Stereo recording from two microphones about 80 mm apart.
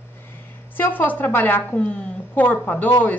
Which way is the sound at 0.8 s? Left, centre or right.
Left.